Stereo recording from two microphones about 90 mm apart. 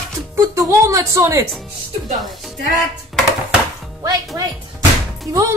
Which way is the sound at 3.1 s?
Centre (ahead or behind).